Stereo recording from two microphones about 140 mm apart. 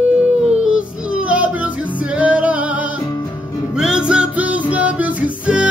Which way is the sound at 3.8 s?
5° right (ahead or behind).